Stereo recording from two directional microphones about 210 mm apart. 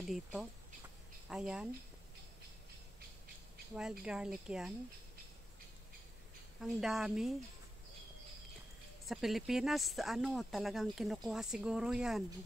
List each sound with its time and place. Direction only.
0.1 s speech: centre (ahead or behind)
4.0 s speech: 5° right (ahead or behind)
6.6 s speech: centre (ahead or behind)
9.0 s speech: centre (ahead or behind)